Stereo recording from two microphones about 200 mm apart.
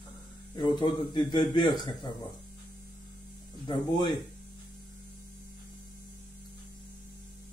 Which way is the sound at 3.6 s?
25° left (ahead or behind).